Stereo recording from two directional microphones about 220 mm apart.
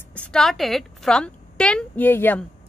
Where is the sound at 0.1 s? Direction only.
5° left (ahead or behind).